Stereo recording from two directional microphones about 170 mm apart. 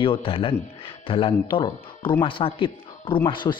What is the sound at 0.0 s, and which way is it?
A man's voice, 30° left (ahead or behind).